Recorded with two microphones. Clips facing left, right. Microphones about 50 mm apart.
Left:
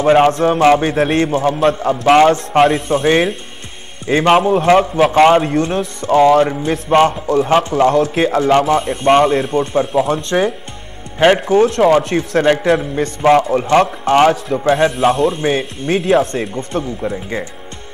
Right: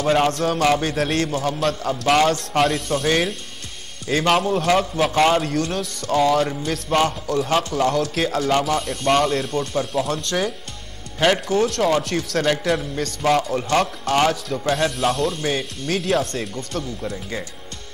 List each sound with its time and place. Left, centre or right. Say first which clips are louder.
0.0 s a man's voice: left 8 dB; left